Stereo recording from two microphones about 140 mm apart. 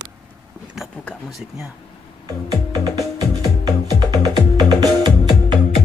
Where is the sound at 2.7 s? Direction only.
25° right (ahead or behind).